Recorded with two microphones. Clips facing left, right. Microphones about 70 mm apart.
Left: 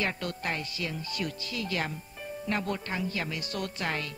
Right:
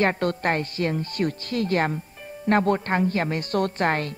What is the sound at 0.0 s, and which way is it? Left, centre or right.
A woman's voice, right.